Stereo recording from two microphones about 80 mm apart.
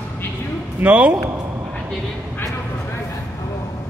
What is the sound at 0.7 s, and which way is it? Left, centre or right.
Speech, centre.